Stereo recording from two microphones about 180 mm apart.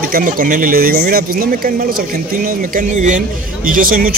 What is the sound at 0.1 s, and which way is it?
Speech, 50° right (ahead or behind).